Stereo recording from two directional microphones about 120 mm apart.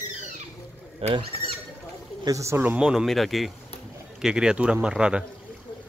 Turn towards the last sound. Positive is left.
turn(degrees=-5)  # may be behind; listen again after turning